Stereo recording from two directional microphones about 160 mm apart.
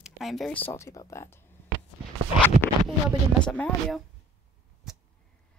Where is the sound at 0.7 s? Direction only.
20° left (ahead or behind).